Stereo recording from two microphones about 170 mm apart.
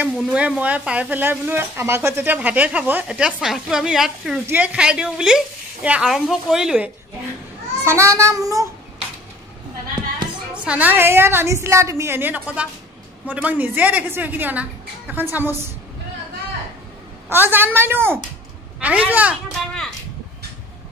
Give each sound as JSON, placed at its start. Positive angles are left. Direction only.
{"t": 0.0, "sound": "speech", "side_deg": -5}
{"t": 7.8, "sound": "a child's voice", "side_deg": -15}
{"t": 8.2, "sound": "child singing", "side_deg": -20}
{"t": 10.5, "sound": "speech", "side_deg": -5}
{"t": 17.3, "sound": "speech", "side_deg": -10}